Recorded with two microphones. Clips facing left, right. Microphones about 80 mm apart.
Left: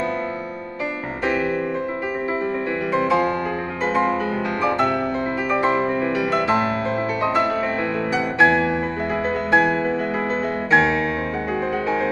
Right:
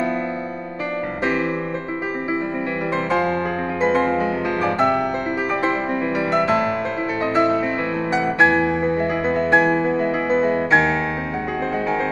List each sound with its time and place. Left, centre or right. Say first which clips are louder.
8.1 s music: right 1 dB; right
10.3 s music: right 2 dB; centre